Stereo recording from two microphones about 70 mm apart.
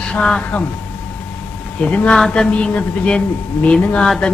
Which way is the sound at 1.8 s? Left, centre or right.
Centre.